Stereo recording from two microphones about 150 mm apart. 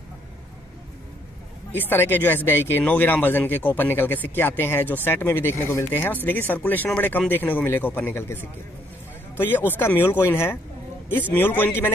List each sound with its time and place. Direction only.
1.7 s speech: 15° left (ahead or behind)
9.8 s speech: 15° left (ahead or behind)